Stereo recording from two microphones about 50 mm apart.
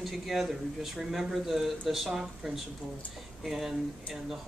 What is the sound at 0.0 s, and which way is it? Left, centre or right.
Speech, centre.